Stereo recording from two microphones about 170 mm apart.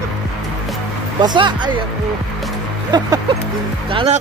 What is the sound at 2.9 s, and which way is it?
Speech, 25° right (ahead or behind).